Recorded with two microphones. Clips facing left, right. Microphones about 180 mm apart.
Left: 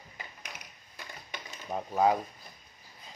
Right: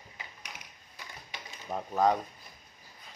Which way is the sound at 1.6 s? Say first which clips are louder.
Left 1 dB; 5° left (ahead or behind).